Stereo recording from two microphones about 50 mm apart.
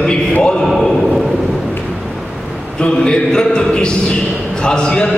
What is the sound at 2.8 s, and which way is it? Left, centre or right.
A man's voice, centre.